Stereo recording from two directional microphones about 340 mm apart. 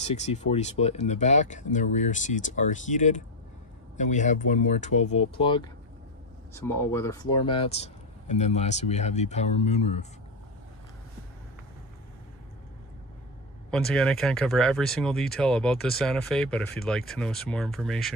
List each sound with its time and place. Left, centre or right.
0.0 s speech: centre
13.7 s speech: centre